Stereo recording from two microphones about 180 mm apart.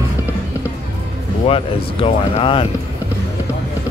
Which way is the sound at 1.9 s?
30° left (ahead or behind).